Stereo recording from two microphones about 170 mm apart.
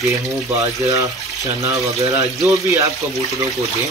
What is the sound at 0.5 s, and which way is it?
Speech, 20° right (ahead or behind).